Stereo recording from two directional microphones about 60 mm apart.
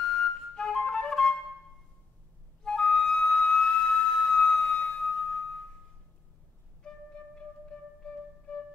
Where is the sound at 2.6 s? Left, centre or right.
Centre.